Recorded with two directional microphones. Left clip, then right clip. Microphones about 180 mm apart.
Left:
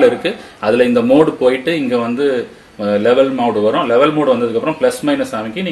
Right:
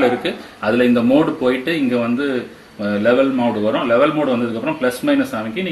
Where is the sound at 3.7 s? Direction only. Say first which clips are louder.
Left 2 dB; 50° left (ahead or behind).